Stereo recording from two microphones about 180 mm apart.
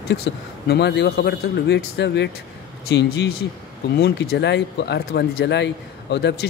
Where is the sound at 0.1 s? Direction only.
65° left (ahead or behind).